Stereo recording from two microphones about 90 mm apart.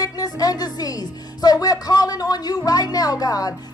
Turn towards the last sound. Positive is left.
turn(degrees=45)  # may be behind; listen again after turning